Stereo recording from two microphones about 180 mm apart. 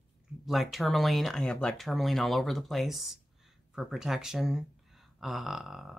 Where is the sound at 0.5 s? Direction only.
Centre (ahead or behind).